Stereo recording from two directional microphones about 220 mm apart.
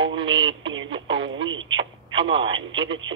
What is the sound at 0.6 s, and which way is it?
Speech, 60° right (ahead or behind).